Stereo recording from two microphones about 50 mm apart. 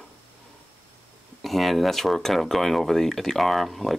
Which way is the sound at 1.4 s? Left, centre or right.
Centre.